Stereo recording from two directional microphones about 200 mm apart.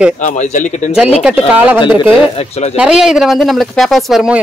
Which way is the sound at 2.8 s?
5° right (ahead or behind).